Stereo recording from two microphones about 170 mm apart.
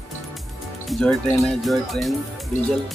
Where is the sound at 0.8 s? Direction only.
5° left (ahead or behind).